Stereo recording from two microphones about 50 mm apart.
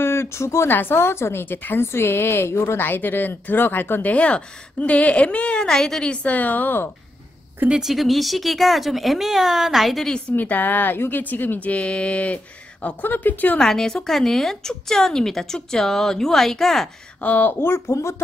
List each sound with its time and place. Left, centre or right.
0.0 s a sound: left
0.7 s speech: left
1.9 s a woman's voice: left
2.8 s speech: left
4.1 s a woman's voice: left
5.7 s a woman's voice: centre
6.1 s speech: left
7.8 s speech: centre
10.3 s speech: left
11.7 s a woman's voice: left
13.0 s speech: left
13.6 s a woman's voice: centre
17.2 s speech: left